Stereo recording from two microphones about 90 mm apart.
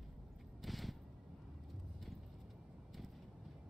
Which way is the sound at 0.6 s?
Centre (ahead or behind).